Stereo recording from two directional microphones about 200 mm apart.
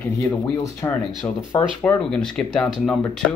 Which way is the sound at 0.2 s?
15° left (ahead or behind).